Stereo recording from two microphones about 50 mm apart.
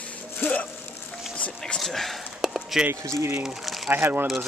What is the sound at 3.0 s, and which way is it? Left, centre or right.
Speech, right.